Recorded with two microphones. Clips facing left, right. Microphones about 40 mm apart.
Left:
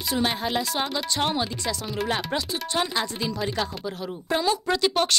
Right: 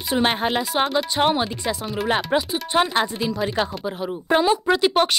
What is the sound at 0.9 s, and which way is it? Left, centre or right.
Speech, right.